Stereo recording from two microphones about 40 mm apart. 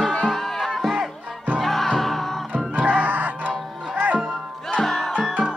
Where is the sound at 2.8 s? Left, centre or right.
Right.